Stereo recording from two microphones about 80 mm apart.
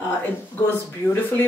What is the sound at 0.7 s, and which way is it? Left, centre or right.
Speech, left.